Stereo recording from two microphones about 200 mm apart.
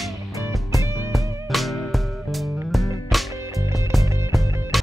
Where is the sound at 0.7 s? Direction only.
15° right (ahead or behind).